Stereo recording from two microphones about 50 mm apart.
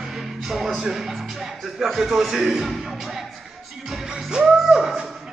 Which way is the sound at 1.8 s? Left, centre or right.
Centre.